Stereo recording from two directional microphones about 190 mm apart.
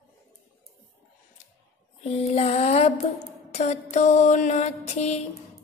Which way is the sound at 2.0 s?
35° left (ahead or behind).